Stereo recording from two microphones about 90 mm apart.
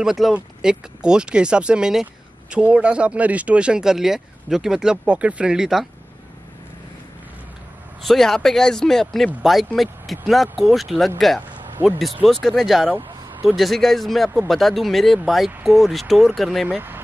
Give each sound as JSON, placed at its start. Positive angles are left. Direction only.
{"t": 0.0, "sound": "speech", "side_deg": -5}
{"t": 8.0, "sound": "speech", "side_deg": 5}
{"t": 11.8, "sound": "speech", "side_deg": -25}
{"t": 12.2, "sound": "speech", "side_deg": 5}
{"t": 16.6, "sound": "speech", "side_deg": -20}